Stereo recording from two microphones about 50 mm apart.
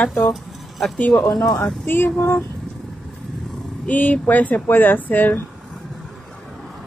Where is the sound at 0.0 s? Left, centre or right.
Left.